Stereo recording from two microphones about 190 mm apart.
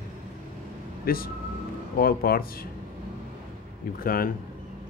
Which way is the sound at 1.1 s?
50° left (ahead or behind).